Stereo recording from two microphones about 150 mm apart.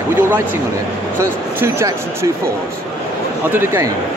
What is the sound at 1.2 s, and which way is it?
Speech, 20° right (ahead or behind).